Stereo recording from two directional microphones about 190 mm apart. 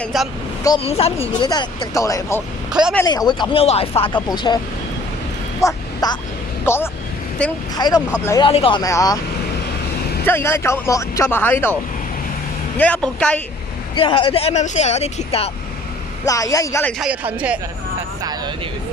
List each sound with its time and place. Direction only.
0.0 s speech: centre (ahead or behind)
0.7 s speech: 30° left (ahead or behind); by 3.1 s 5° left (ahead or behind)
3.1 s speech: 20° left (ahead or behind)
5.6 s speech: 20° left (ahead or behind)
10.2 s speech: 10° left (ahead or behind)
13.9 s speech: 25° left (ahead or behind)
16.3 s speech: 20° left (ahead or behind)
17.0 s speech: 5° right (ahead or behind)